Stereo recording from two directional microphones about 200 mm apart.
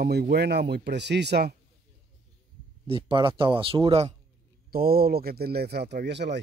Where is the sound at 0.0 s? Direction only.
50° right (ahead or behind).